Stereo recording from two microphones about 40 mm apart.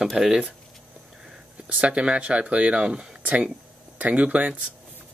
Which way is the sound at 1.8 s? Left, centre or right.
Right.